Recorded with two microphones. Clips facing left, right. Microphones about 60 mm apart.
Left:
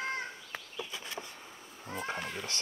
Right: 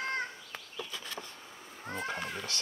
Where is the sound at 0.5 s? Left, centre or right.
Centre.